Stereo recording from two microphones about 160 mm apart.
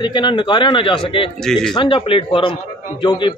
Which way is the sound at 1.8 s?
30° left (ahead or behind).